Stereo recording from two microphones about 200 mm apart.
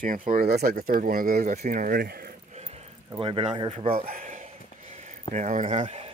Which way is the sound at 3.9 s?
45° right (ahead or behind).